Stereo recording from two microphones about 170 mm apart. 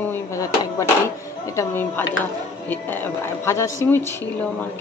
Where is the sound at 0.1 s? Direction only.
15° left (ahead or behind).